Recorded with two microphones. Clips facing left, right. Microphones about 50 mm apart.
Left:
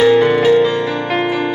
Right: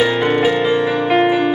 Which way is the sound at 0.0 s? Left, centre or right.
Centre.